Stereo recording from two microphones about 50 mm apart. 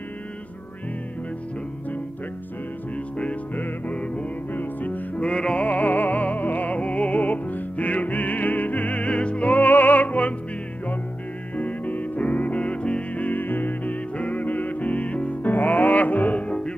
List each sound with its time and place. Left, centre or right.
3.9 s music: left
5.1 s music: left
11.5 s music: left
15.4 s music: left
16.4 s music: centre